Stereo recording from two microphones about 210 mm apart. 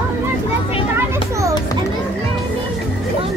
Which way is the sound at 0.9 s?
15° right (ahead or behind).